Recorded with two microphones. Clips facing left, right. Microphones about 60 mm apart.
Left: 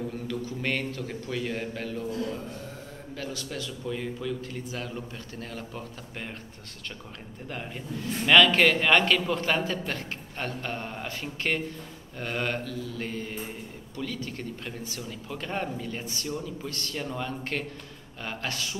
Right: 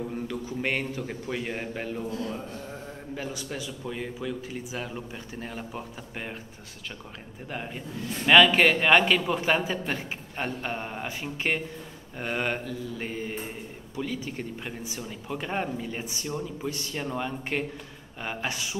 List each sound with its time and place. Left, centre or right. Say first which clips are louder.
0.1 s a man's voice: right 1 dB; centre
7.4 s a man's voice: right 1 dB; centre